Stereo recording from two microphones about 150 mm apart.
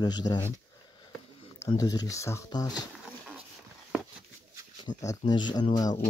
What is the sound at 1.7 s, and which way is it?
Speech, 25° left (ahead or behind).